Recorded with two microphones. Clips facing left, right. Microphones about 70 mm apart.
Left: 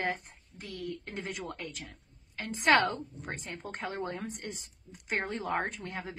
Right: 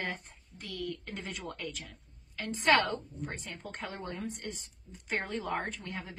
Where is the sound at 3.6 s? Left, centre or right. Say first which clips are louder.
Left 4 dB; left.